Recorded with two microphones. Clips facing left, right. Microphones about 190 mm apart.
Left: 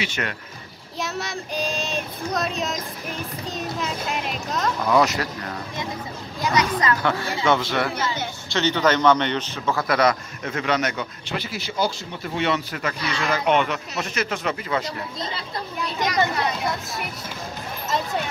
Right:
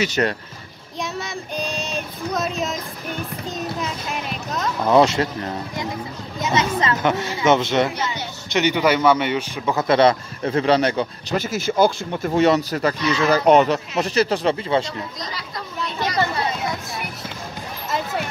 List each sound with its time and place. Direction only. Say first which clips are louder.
0.0 s speech: right 8 dB; 35° right (ahead or behind)
0.9 s child singing: right 1 dB; centre (ahead or behind)
4.8 s speech: right 5 dB; 25° right (ahead or behind)
11.3 s speech: right 8 dB; 45° right (ahead or behind); by 14.9 s 30° right (ahead or behind)
15.1 s speech: left 1 dB; 30° left (ahead or behind)